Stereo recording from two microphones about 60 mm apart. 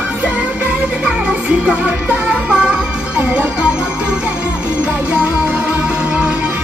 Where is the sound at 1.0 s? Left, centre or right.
Centre.